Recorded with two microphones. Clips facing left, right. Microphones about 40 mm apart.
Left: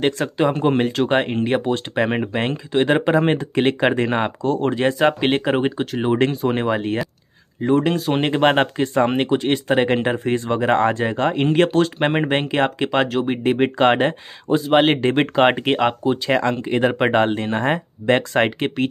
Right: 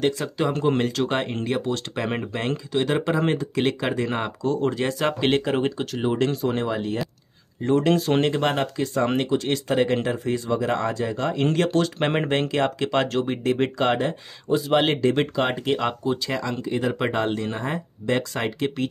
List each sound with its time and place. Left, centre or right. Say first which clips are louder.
0.0 s speech: left 4 dB; left
0.5 s speech: left 2 dB; left
7.6 s speech: left 3 dB; centre
7.9 s speech: even; centre
8.4 s speech: left 7 dB; left
11.5 s speech: left 5 dB; left
12.1 s speech: left 3 dB; centre; by 18.9 s left